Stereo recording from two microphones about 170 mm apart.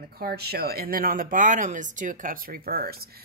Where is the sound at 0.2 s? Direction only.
65° right (ahead or behind).